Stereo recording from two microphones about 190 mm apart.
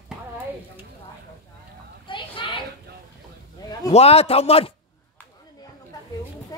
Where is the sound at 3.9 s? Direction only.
30° left (ahead or behind).